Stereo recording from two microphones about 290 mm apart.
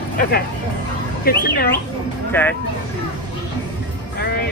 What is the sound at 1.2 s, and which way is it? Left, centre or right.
Speech, left.